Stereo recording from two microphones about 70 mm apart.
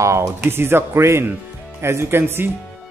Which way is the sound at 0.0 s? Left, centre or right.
Right.